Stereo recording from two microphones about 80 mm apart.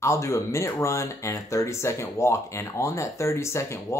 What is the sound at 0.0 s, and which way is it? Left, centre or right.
Speech, left.